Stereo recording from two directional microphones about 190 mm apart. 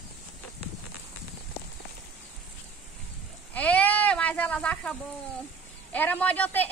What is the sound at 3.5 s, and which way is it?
Speech, 10° left (ahead or behind).